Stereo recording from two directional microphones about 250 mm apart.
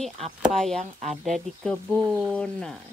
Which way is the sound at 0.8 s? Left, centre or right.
Right.